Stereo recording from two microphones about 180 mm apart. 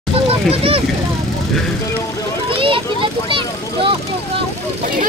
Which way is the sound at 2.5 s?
30° right (ahead or behind).